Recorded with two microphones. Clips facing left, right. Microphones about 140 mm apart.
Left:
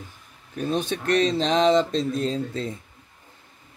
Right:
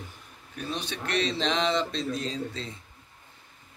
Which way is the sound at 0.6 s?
50° left (ahead or behind).